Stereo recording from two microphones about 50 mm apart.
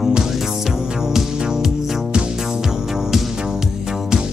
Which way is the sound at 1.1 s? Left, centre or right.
Centre.